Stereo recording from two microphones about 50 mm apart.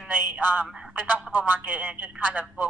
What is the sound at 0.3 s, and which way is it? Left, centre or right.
A man's voice, right.